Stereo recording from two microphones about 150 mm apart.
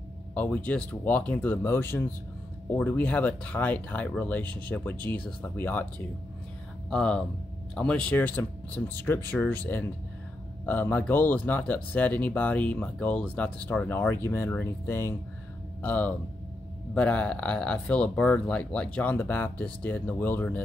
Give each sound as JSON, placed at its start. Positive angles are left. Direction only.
{"t": 0.3, "sound": "speech", "side_deg": 10}
{"t": 4.9, "sound": "speech", "side_deg": -30}
{"t": 5.4, "sound": "speech", "side_deg": 10}